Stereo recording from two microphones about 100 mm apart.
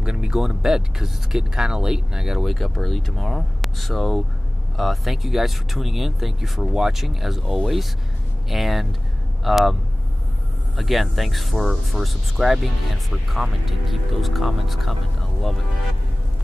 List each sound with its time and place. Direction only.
0.0 s speech: 10° right (ahead or behind)
10.8 s speech: centre (ahead or behind)